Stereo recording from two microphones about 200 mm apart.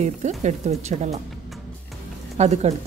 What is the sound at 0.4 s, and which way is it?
Speech, 35° right (ahead or behind).